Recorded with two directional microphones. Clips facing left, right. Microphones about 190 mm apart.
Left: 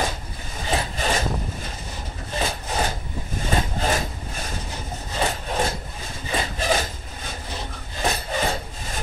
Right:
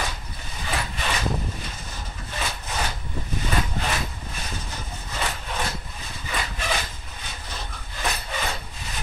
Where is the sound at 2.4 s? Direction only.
35° left (ahead or behind).